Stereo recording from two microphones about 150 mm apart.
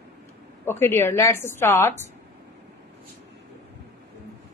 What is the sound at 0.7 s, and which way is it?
A woman's voice, 15° left (ahead or behind).